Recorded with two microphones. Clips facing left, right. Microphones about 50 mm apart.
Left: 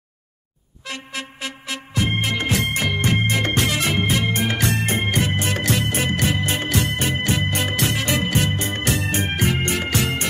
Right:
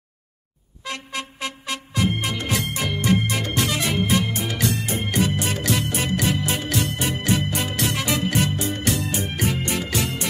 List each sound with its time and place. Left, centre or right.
2.0 s music: left